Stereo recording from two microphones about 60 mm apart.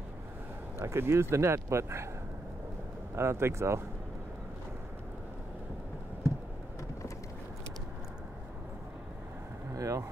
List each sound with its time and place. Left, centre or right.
0.8 s speech: right
3.2 s speech: right
9.8 s vehicle: right